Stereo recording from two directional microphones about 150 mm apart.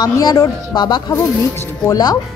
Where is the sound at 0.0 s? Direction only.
25° left (ahead or behind).